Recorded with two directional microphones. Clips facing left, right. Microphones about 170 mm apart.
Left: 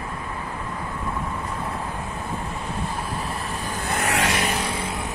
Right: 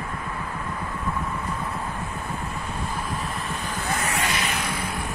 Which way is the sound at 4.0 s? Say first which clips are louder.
Left 7 dB; 80° left.